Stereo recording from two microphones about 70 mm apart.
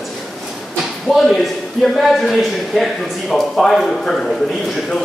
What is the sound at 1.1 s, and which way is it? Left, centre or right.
A man's voice, centre.